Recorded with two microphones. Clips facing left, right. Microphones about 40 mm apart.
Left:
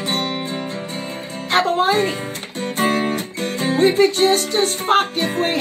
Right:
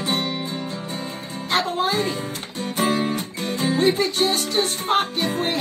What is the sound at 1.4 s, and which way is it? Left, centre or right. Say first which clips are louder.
Music: left 5 dB; left.